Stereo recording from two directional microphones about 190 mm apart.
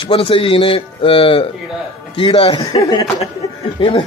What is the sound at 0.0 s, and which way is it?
A man's voice, 30° left (ahead or behind).